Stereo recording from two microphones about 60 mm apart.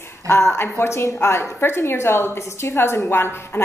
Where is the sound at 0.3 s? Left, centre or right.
Left.